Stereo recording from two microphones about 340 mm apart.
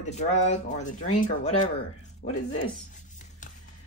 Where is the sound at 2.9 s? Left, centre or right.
Left.